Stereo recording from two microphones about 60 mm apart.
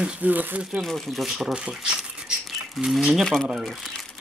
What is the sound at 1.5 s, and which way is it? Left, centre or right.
Speech, centre.